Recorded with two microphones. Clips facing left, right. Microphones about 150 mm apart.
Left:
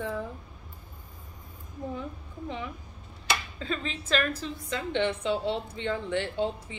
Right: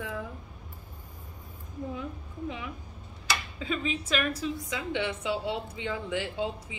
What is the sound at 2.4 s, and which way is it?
A woman's voice, 5° right (ahead or behind).